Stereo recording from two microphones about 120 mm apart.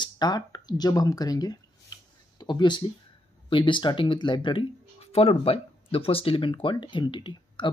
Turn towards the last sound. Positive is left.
turn(degrees=40)  # may be behind; listen again after turning